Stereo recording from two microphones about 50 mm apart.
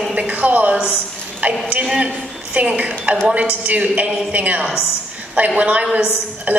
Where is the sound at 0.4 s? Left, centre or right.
Right.